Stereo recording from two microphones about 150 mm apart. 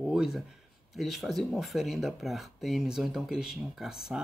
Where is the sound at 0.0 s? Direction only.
5° right (ahead or behind).